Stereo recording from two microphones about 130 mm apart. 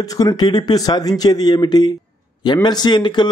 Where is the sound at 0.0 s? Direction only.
25° left (ahead or behind).